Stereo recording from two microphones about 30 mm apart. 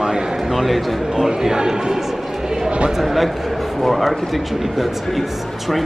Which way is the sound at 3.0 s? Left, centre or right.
Centre.